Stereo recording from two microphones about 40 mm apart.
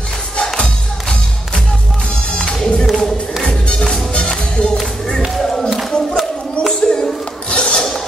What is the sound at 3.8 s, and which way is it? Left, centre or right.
Music, centre.